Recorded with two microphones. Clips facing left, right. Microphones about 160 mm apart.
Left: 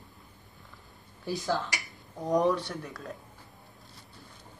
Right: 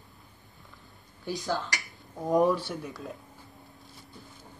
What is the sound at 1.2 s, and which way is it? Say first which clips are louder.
Speech: left 1 dB; centre (ahead or behind).